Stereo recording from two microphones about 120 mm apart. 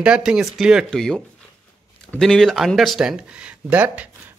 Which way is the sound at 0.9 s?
5° left (ahead or behind).